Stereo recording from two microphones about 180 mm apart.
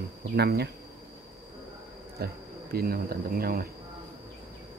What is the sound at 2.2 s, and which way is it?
Speech, 60° right (ahead or behind).